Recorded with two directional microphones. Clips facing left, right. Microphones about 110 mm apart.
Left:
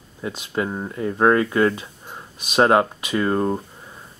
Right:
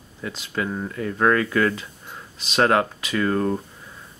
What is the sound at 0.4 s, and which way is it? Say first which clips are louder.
Speech: left 1 dB; 25° left (ahead or behind).